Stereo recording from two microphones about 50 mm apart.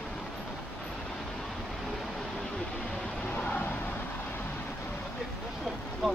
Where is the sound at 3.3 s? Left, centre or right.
Left.